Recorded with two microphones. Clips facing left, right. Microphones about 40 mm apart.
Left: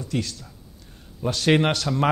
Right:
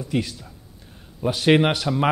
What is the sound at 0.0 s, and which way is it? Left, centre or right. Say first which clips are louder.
A man's voice: right 3 dB; centre.